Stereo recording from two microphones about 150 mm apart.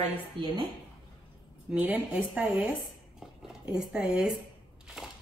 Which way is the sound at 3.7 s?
5° right (ahead or behind).